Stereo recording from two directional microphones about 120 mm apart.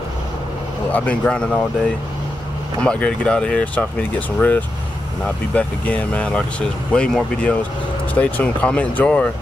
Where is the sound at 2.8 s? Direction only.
10° left (ahead or behind).